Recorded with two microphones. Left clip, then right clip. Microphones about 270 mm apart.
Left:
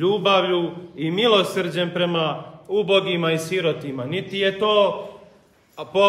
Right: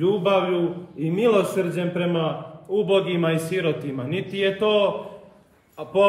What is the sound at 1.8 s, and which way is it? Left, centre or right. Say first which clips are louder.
A man's voice: left 3 dB; centre.